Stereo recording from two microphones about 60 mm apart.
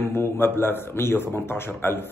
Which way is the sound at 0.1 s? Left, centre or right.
Left.